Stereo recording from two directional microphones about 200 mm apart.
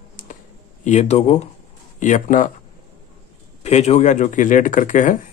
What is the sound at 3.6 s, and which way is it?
Speech, 35° left (ahead or behind).